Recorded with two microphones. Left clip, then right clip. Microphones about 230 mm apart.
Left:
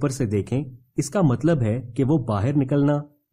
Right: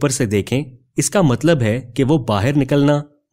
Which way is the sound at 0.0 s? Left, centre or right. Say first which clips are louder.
Right 7 dB; right.